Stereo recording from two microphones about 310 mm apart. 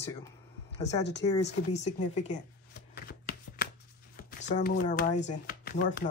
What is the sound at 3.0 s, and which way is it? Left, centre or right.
Shuffling cards, left.